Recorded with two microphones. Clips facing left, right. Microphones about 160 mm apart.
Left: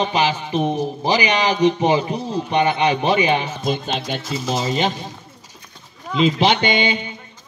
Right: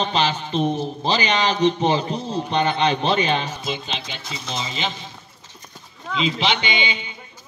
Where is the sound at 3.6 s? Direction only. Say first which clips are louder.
Left 6 dB; 50° left (ahead or behind).